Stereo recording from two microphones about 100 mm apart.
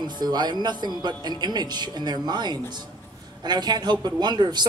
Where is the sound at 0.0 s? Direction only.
45° right (ahead or behind).